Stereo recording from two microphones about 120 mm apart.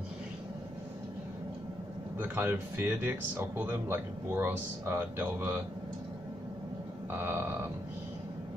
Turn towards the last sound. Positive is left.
turn(degrees=-15)  # may be behind; listen again after turning